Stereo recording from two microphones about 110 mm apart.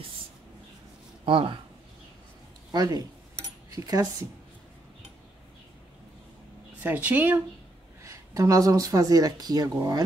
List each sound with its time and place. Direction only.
1.2 s speech: 50° right (ahead or behind)
2.7 s speech: 35° right (ahead or behind)
6.8 s speech: 15° right (ahead or behind)
8.0 s speech: 30° right (ahead or behind)